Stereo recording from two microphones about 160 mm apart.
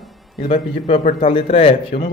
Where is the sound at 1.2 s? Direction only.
35° left (ahead or behind).